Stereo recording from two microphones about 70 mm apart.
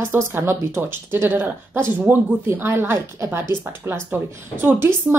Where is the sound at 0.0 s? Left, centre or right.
Right.